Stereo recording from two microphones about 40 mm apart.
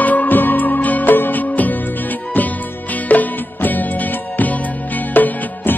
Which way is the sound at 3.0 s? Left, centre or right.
Left.